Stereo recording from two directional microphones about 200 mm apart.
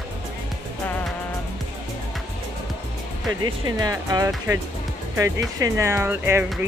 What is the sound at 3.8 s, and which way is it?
Speech, 20° right (ahead or behind).